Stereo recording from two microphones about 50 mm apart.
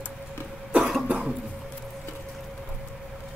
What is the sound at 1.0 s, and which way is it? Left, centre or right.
Cough, right.